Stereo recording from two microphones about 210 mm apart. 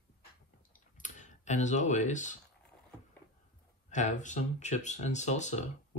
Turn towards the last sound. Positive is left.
turn(degrees=35)  # may be behind; listen again after turning